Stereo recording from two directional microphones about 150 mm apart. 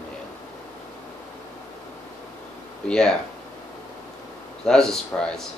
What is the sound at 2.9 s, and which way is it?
Speech, 5° left (ahead or behind).